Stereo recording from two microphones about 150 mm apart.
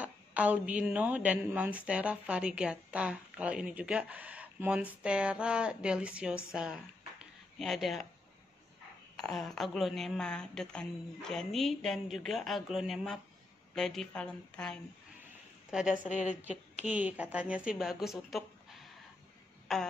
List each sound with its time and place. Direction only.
0.0 s a woman's voice: 10° right (ahead or behind)
9.1 s a woman's voice: 5° left (ahead or behind)
15.9 s a woman's voice: 55° left (ahead or behind)
16.8 s a woman's voice: 10° right (ahead or behind)